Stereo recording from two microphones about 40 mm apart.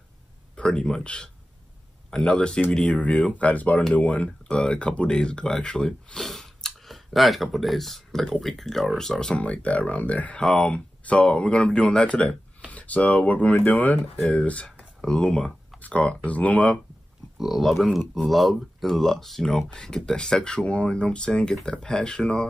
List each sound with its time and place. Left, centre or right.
0.6 s speech: left
2.0 s a sound: centre
2.3 s speech: left
4.5 s speech: left
6.9 s speech: centre
9.4 s speech: left
10.4 s speech: left
14.3 s speech: left
15.0 s speech: left
17.4 s speech: centre
19.4 s speech: centre